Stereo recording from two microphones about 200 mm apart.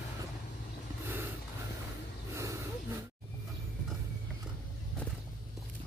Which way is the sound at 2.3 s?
15° right (ahead or behind).